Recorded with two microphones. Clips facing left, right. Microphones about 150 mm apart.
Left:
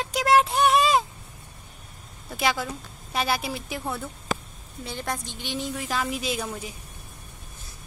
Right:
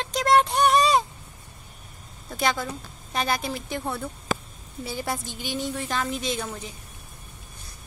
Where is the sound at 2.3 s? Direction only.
5° left (ahead or behind).